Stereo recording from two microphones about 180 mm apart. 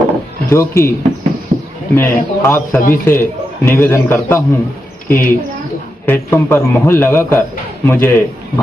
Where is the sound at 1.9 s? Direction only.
15° left (ahead or behind).